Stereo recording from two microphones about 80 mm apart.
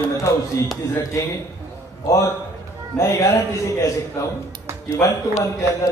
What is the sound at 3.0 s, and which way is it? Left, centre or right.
Speech, left.